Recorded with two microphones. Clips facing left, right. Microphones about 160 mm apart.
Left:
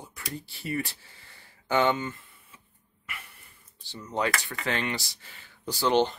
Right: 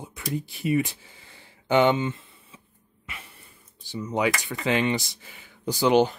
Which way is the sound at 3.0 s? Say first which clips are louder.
Right 1 dB; 25° right (ahead or behind).